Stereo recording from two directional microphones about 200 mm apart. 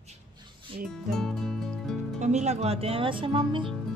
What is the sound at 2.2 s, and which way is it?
Speech, 35° right (ahead or behind).